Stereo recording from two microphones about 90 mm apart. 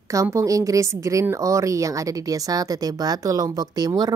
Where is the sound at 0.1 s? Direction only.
35° right (ahead or behind).